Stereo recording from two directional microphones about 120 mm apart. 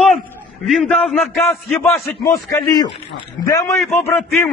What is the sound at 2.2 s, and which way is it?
Speech, 30° left (ahead or behind).